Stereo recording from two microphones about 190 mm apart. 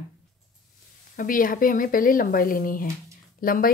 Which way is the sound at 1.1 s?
45° left (ahead or behind).